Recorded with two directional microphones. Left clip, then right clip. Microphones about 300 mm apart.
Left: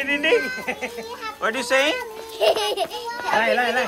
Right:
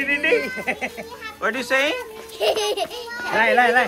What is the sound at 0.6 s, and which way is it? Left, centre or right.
Speech, right.